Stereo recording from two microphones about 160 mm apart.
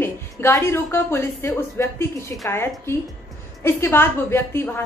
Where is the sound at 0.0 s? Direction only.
15° left (ahead or behind).